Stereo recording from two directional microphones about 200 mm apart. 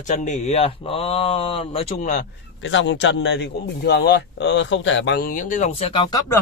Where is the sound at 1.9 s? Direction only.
40° left (ahead or behind).